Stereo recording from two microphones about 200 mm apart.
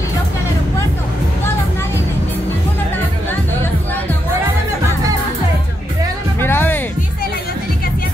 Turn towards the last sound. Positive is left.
turn(degrees=10)  # may be behind; listen again after turning